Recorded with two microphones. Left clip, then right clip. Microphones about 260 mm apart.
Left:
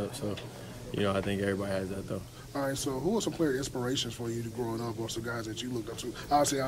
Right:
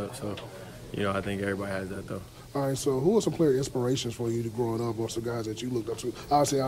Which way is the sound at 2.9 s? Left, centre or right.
Left.